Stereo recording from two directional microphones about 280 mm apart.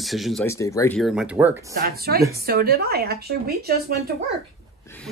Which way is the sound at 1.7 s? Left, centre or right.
Right.